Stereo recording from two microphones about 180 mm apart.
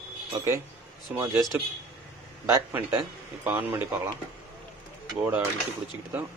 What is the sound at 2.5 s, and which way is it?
Speech, 15° right (ahead or behind).